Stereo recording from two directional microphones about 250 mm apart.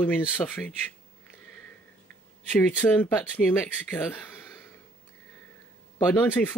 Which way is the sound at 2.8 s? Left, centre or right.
Centre.